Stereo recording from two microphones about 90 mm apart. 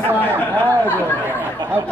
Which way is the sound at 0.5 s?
20° left (ahead or behind).